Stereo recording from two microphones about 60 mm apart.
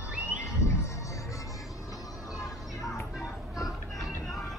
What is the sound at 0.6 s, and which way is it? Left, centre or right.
Music, left.